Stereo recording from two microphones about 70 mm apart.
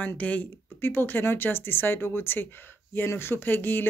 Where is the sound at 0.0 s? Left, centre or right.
Left.